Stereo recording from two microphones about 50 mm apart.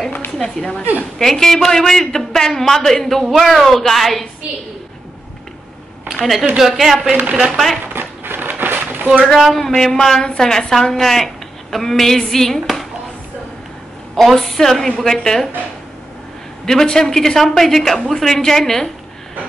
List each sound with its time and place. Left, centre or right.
0.4 s a man's voice: centre
6.1 s a woman's voice: centre
7.8 s a sound: right
9.5 s a man's voice: centre
14.1 s a man's voice: centre
16.6 s a man's voice: centre